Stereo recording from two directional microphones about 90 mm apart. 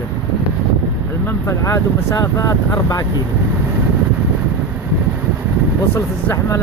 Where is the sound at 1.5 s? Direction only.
40° left (ahead or behind).